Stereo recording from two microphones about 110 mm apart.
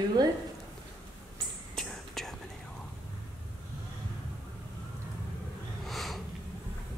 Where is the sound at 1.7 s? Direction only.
5° left (ahead or behind).